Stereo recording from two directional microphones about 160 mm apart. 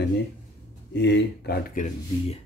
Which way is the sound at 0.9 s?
90° left.